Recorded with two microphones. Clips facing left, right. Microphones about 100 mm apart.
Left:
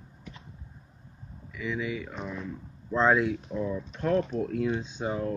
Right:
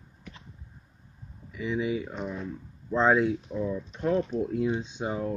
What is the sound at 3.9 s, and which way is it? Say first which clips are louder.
Speech: left 1 dB; 20° right (ahead or behind).